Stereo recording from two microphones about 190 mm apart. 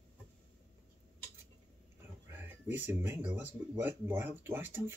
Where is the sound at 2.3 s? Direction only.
10° right (ahead or behind).